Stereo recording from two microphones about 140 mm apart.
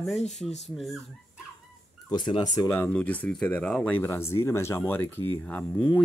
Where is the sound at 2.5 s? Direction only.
15° left (ahead or behind).